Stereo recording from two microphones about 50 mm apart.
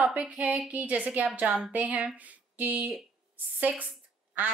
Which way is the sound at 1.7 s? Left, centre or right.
Right.